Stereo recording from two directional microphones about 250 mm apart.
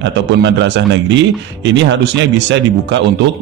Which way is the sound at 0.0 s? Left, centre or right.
Right.